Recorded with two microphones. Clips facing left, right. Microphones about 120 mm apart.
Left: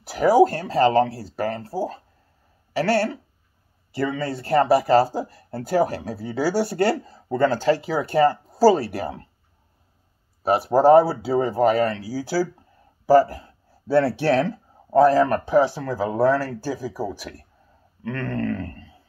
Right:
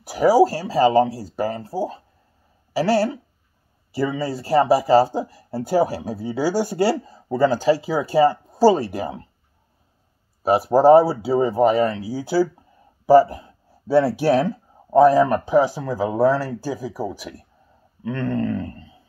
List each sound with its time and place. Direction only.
0.0 s speech: 10° right (ahead or behind)
4.2 s speech: 10° right (ahead or behind)
10.7 s speech: 10° right (ahead or behind)
18.0 s a sound: 10° right (ahead or behind)